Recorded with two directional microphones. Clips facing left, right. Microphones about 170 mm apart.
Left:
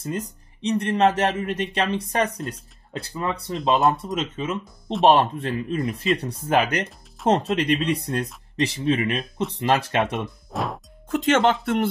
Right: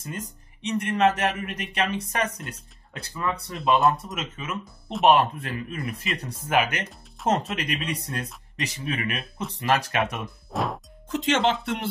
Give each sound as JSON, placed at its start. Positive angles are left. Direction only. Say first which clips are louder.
{"t": 0.0, "sound": "speech", "louder": "left 6 dB", "side_deg": 30}
{"t": 10.5, "sound": "music", "louder": "right 1 dB", "side_deg": 0}
{"t": 11.1, "sound": "speech", "louder": "left 4 dB", "side_deg": 50}